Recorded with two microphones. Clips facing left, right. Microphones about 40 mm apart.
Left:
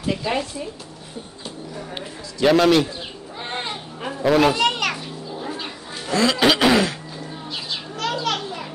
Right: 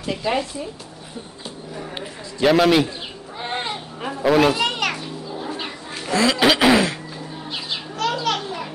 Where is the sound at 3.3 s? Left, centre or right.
Centre.